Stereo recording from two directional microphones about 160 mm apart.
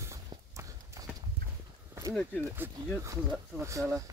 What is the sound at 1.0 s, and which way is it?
Clip-clop, 20° right (ahead or behind).